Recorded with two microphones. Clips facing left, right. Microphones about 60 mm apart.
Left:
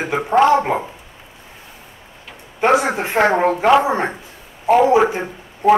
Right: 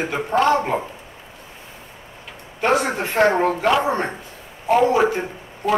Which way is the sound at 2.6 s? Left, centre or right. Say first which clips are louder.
Left 4 dB; centre.